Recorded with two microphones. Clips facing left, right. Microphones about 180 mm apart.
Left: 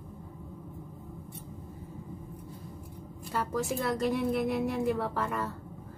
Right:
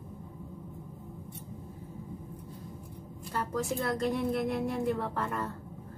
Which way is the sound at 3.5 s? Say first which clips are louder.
Even; 5° left (ahead or behind).